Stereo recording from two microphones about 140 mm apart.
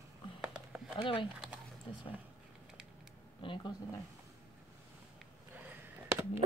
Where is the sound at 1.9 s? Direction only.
40° left (ahead or behind).